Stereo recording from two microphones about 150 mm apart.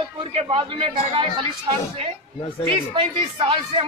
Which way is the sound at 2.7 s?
35° right (ahead or behind).